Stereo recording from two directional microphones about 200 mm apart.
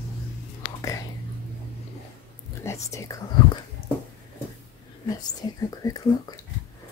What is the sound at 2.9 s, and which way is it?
Speech, 15° left (ahead or behind).